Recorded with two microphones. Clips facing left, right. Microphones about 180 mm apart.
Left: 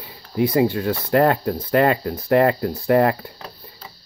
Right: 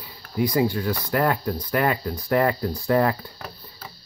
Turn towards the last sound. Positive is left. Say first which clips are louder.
# even
turn(degrees=20)  # may be behind; listen again after turning